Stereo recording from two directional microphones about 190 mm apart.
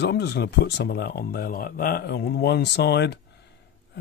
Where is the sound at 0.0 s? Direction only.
60° left (ahead or behind).